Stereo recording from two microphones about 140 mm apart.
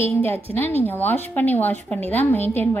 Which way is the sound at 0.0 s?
15° left (ahead or behind).